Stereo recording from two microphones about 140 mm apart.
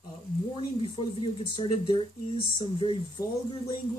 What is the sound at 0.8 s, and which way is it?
Speech, 35° left (ahead or behind).